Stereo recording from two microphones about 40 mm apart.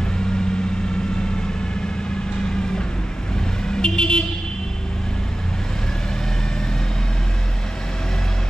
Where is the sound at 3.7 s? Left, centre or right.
Left.